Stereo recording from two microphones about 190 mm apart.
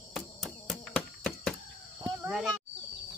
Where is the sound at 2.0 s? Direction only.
5° right (ahead or behind).